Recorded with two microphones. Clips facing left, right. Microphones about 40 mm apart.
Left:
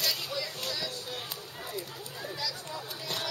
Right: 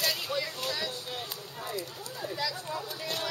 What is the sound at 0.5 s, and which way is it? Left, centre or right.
Music, centre.